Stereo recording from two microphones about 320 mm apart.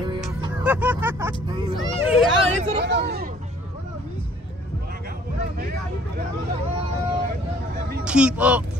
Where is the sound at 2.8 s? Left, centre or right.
Right.